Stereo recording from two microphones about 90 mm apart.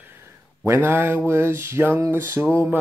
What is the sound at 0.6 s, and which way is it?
Mantra, 30° right (ahead or behind).